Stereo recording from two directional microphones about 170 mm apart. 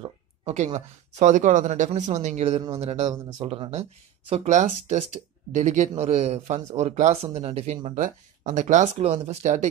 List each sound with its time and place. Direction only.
0.0 s speech: 35° right (ahead or behind)